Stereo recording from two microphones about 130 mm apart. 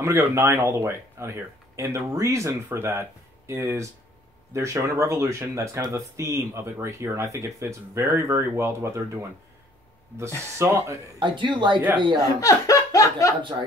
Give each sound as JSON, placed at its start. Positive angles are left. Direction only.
{"t": 0.0, "sound": "speech", "side_deg": -20}
{"t": 10.6, "sound": "speech", "side_deg": -20}
{"t": 11.1, "sound": "speech", "side_deg": -40}
{"t": 12.2, "sound": "speech", "side_deg": 25}
{"t": 13.4, "sound": "speech", "side_deg": -40}